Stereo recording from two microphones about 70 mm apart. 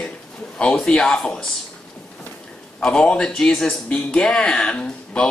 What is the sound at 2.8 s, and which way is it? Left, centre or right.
Speech, centre.